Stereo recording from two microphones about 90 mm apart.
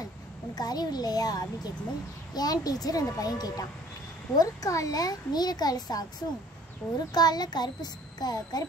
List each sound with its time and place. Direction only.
0.6 s a child's voice: 50° left (ahead or behind)
6.8 s a child's voice: 5° left (ahead or behind)
7.2 s a child's voice: 50° left (ahead or behind)